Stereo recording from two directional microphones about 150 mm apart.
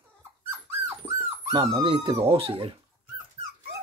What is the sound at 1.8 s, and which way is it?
Speech, 40° right (ahead or behind).